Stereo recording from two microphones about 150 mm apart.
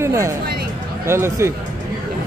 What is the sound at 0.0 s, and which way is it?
Chatter, 20° right (ahead or behind).